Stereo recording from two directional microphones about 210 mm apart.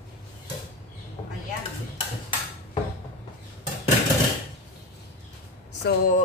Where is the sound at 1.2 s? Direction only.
20° left (ahead or behind).